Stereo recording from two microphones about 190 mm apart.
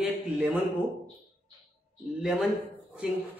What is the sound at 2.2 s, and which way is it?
Speech, 5° right (ahead or behind).